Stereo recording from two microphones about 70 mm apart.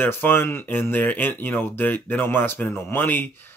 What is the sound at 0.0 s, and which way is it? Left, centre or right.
Speech, left.